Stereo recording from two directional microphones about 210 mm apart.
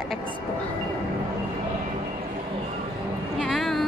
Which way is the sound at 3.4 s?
Centre (ahead or behind).